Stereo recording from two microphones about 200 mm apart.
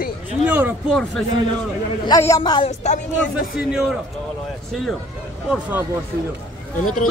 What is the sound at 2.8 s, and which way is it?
Speech, 35° left (ahead or behind).